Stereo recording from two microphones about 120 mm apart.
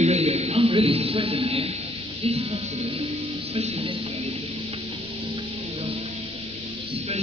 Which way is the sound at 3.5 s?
55° right (ahead or behind).